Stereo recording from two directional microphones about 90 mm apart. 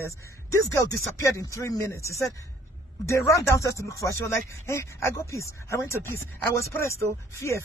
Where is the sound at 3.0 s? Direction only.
35° left (ahead or behind).